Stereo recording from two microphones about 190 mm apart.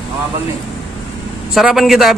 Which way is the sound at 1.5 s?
Centre (ahead or behind).